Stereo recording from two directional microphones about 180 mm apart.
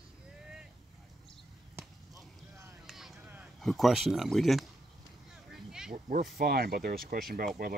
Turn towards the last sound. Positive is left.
turn(degrees=-55)  # may be behind; listen again after turning